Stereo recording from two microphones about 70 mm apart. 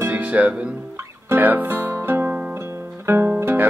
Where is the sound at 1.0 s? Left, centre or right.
Right.